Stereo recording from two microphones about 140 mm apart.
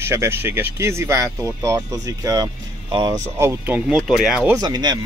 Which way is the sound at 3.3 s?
20° right (ahead or behind).